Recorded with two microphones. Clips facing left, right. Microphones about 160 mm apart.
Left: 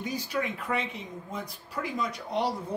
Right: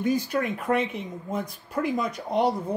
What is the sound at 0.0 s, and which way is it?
Speech, 50° right (ahead or behind).